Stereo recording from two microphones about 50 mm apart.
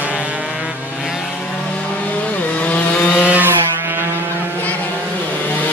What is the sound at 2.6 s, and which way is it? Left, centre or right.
Chainsaw, left.